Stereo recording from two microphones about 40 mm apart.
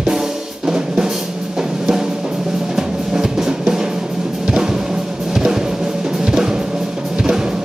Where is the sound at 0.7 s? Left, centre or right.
Centre.